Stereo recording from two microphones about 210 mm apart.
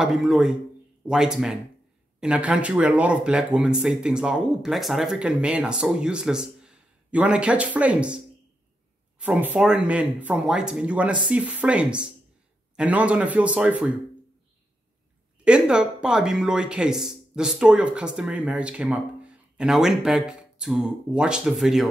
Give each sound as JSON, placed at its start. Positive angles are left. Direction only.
{"t": 0.0, "sound": "speech", "side_deg": 0}
{"t": 9.2, "sound": "speech", "side_deg": -5}
{"t": 15.4, "sound": "speech", "side_deg": -5}